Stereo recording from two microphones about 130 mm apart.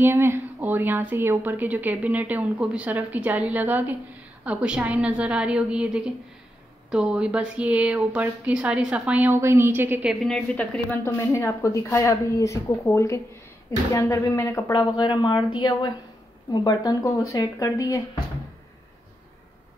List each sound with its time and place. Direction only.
0.0 s a woman's voice: 20° right (ahead or behind)
10.0 s a woman's voice: 5° left (ahead or behind); by 14.6 s 25° left (ahead or behind)
14.7 s a woman's voice: 35° left (ahead or behind)